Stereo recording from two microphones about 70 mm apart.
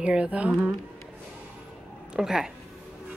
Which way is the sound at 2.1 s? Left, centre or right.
Centre.